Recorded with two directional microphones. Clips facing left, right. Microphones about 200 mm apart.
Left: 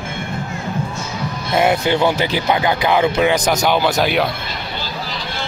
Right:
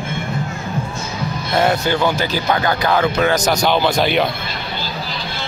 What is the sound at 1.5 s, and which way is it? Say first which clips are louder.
Speech: left 1 dB; 20° left (ahead or behind).